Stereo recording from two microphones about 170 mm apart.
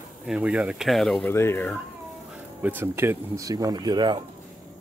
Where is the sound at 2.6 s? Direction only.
10° right (ahead or behind).